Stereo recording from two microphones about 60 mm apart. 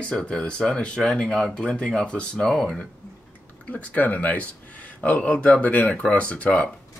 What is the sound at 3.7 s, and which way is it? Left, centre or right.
Speech, left.